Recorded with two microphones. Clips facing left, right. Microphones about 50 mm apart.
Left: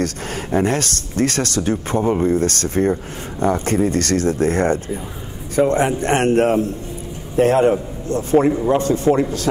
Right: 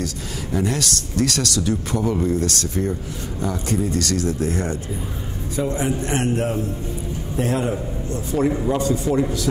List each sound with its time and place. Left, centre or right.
0.0 s a man's voice: left